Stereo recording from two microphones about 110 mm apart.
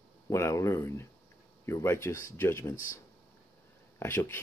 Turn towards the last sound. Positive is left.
turn(degrees=25)  # may be behind; listen again after turning